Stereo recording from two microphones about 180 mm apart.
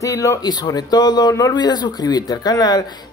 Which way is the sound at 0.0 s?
15° left (ahead or behind).